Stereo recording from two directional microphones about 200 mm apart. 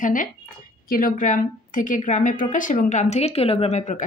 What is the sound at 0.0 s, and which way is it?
A woman's voice, 40° left (ahead or behind).